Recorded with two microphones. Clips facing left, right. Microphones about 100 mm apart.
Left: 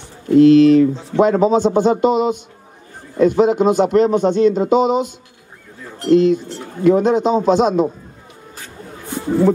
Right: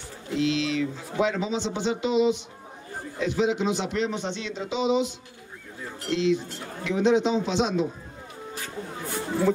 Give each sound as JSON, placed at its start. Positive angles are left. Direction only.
{"t": 0.3, "sound": "a man's voice", "side_deg": 50}